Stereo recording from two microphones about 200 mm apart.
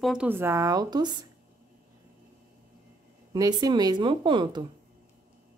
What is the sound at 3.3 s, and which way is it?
Speech, 20° right (ahead or behind).